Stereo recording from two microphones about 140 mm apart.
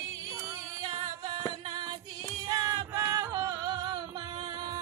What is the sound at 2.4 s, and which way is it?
Music, 30° right (ahead or behind).